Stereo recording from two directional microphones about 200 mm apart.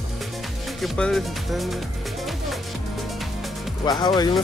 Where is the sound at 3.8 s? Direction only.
20° left (ahead or behind).